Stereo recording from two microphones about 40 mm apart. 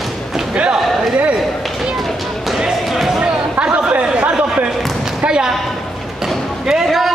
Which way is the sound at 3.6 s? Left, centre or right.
Right.